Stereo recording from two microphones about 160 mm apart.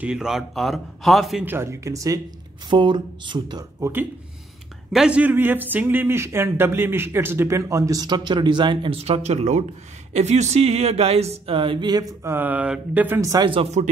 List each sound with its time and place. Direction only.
0.0 s a man's voice: 5° right (ahead or behind)
1.4 s speech: 15° right (ahead or behind)
4.9 s speech: 5° right (ahead or behind)
13.5 s speech: 40° right (ahead or behind)